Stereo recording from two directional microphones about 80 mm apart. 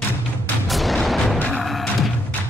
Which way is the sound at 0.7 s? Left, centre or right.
Centre.